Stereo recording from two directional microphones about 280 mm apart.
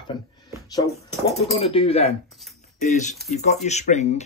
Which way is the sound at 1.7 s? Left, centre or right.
Left.